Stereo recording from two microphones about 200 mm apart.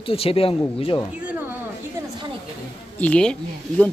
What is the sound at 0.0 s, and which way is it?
Speech, 30° left (ahead or behind).